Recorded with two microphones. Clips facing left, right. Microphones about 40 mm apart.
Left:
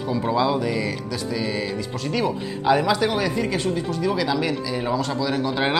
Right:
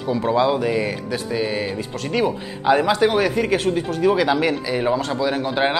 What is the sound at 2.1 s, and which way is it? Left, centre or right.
Speech, centre.